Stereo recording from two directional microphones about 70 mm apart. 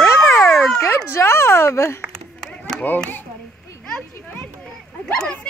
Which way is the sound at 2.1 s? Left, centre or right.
Centre.